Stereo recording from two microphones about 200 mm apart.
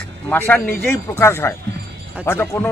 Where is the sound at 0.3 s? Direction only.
10° left (ahead or behind).